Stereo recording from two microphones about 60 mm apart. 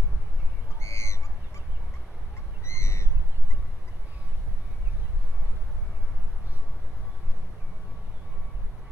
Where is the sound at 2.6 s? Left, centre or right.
Left.